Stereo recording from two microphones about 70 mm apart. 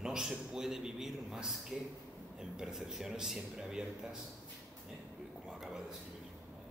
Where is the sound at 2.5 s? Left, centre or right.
Centre.